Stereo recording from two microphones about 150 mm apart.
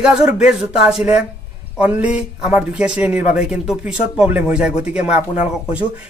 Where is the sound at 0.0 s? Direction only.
5° right (ahead or behind).